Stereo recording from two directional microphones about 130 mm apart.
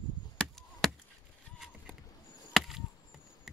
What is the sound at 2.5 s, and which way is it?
Chop, centre (ahead or behind).